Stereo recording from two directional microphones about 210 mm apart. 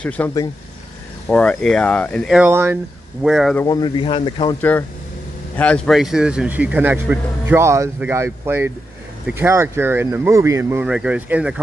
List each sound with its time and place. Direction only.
0.2 s speech: 10° left (ahead or behind)
2.3 s speech: 10° right (ahead or behind)
3.6 s speech: 20° left (ahead or behind)
4.6 s speech: 10° left (ahead or behind)